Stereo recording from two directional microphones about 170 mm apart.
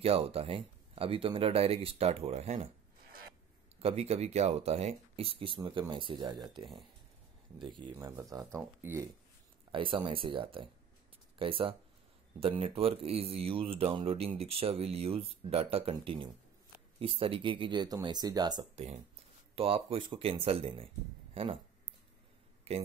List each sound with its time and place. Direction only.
0.0 s speech: 35° right (ahead or behind)
3.8 s speech: 40° right (ahead or behind)
7.9 s speech: 15° right (ahead or behind)
9.7 s speech: 30° right (ahead or behind)
19.5 s speech: 35° right (ahead or behind)
22.7 s speech: 35° right (ahead or behind)